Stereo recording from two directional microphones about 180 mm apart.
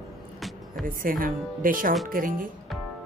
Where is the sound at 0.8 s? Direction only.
50° right (ahead or behind).